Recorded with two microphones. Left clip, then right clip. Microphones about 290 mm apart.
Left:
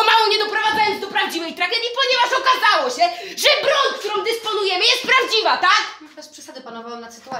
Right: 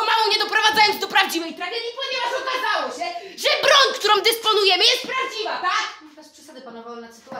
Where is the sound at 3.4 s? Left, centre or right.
Centre.